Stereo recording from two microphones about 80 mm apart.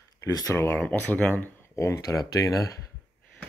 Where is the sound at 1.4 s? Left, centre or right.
Left.